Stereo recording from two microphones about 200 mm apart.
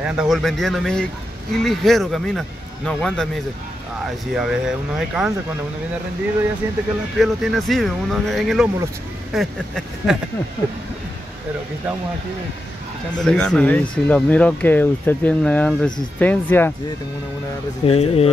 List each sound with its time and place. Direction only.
0.0 s speech: 5° right (ahead or behind)
4.3 s speech: centre (ahead or behind)
7.2 s speech: centre (ahead or behind)
13.2 s speech: 5° left (ahead or behind)
17.8 s speech: 30° left (ahead or behind)